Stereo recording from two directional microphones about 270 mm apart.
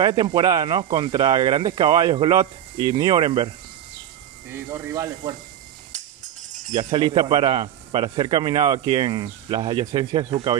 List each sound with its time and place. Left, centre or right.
0.0 s speech: centre
4.5 s speech: centre
6.7 s speech: centre